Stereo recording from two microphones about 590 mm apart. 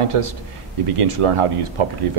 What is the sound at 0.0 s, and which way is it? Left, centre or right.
Speech, right.